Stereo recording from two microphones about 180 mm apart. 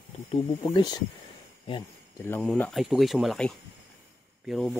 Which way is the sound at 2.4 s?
5° left (ahead or behind).